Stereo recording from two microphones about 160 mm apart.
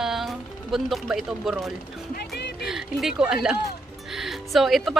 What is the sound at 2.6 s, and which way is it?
A woman's voice, centre (ahead or behind).